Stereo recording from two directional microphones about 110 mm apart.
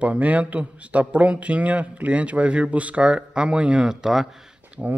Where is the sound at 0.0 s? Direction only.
10° right (ahead or behind).